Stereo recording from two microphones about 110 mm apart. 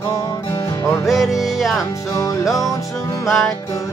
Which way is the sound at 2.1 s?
30° left (ahead or behind).